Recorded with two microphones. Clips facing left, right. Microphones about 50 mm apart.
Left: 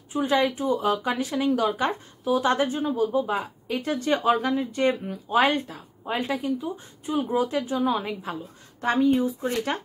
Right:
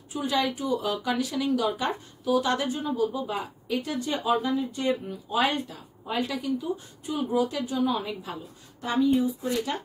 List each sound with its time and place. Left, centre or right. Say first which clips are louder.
0.3 s speech: left 3 dB; left